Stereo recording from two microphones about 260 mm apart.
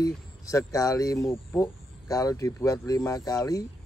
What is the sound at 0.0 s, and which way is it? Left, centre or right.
Speech, centre.